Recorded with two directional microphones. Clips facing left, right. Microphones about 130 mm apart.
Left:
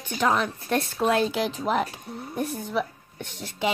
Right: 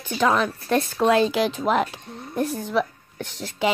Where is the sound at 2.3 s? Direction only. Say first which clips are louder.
Right 5 dB; 90° right.